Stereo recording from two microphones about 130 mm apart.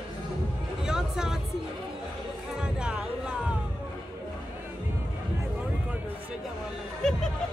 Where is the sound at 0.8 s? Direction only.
5° right (ahead or behind).